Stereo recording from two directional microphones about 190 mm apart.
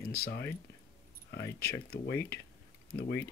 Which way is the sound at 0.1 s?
55° left (ahead or behind).